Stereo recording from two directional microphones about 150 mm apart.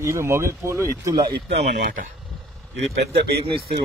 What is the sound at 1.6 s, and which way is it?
Speech, 60° right (ahead or behind).